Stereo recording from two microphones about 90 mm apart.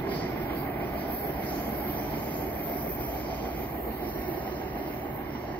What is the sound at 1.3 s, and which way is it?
Vehicle, 15° left (ahead or behind).